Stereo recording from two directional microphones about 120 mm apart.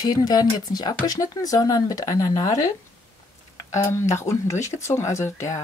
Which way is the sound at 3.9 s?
25° left (ahead or behind).